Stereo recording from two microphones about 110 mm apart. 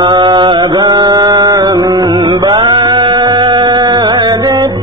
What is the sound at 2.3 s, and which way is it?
Music, 40° right (ahead or behind).